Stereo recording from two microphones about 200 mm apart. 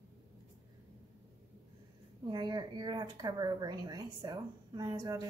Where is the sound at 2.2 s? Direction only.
20° right (ahead or behind).